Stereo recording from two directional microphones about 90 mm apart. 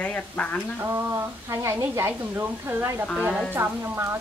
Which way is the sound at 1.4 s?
30° right (ahead or behind).